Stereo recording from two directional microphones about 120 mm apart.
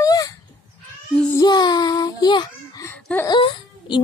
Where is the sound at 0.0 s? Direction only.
30° left (ahead or behind).